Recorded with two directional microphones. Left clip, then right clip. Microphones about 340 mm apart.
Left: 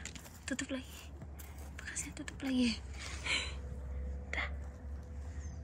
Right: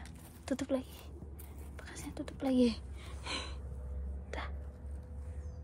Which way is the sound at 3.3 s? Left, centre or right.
Centre.